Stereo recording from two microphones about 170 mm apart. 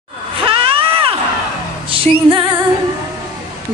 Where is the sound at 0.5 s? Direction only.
30° right (ahead or behind).